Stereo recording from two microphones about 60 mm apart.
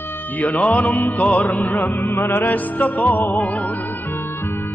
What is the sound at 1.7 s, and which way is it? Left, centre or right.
Music, left.